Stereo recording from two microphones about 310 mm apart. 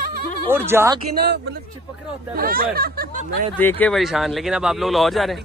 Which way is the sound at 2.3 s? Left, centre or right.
Right.